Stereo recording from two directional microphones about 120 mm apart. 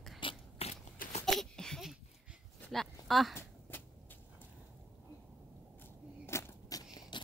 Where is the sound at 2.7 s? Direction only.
Centre (ahead or behind).